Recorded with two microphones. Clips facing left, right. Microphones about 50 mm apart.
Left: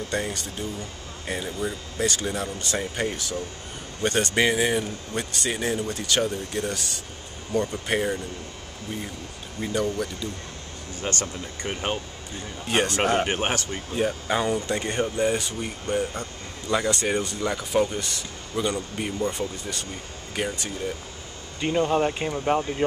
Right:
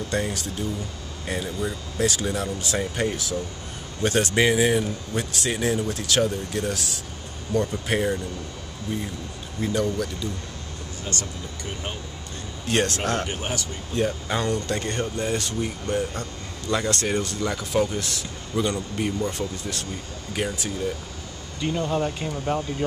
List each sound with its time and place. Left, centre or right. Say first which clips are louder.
0.1 s speech: right 2 dB; centre
9.6 s speech: right 1 dB; centre
11.1 s speech: left 3 dB; left
12.6 s speech: left 1 dB; centre
13.2 s speech: left 4 dB; left
13.9 s speech: even; centre
21.5 s speech: left 3 dB; left